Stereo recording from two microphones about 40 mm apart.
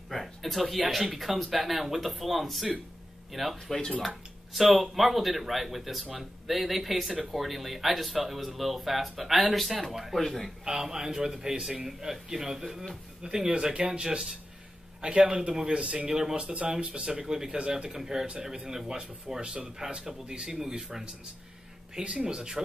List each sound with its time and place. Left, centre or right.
0.1 s speech: centre
10.6 s a man's voice: centre
16.1 s a man's voice: centre
16.4 s a man's voice: right
17.6 s speech: right
17.9 s a man's voice: centre
22.0 s speech: right